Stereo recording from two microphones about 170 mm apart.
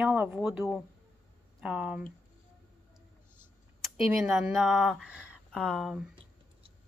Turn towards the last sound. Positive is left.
turn(degrees=0)  # may be behind; listen again after turning